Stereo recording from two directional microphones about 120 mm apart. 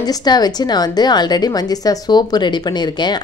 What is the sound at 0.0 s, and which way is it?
A woman's voice, 35° left (ahead or behind).